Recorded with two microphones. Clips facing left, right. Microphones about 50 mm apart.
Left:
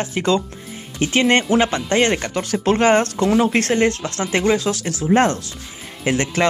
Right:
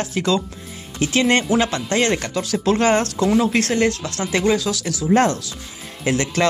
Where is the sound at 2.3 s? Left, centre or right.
Left.